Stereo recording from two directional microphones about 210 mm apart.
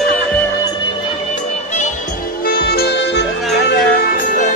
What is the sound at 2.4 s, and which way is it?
Music, 45° left (ahead or behind).